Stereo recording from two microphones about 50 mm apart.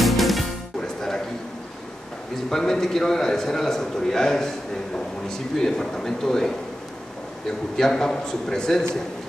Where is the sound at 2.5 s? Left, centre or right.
Centre.